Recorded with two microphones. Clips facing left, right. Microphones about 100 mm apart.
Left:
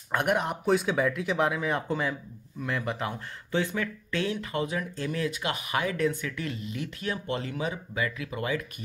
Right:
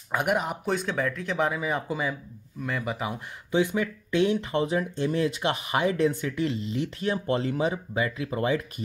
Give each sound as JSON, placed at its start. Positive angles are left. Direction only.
{"t": 0.1, "sound": "speech", "side_deg": -5}